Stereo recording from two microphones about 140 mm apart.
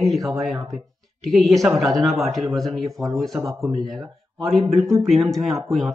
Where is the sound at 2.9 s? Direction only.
25° right (ahead or behind).